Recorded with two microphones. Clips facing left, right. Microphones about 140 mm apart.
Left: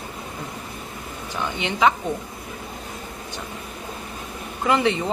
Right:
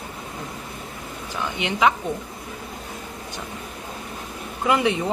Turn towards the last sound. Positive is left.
turn(degrees=-10)  # may be behind; listen again after turning